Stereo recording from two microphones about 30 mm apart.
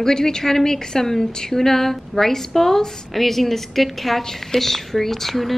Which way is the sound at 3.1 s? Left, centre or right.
Centre.